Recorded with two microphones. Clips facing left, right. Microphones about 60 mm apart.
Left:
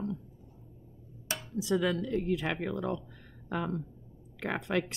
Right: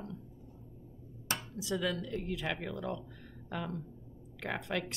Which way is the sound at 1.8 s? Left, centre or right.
Left.